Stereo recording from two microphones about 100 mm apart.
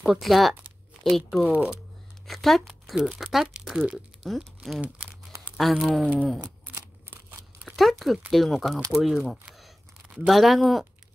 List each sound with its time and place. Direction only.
0.0 s speech: centre (ahead or behind)
7.1 s scissors: 20° right (ahead or behind)
7.6 s speech: centre (ahead or behind)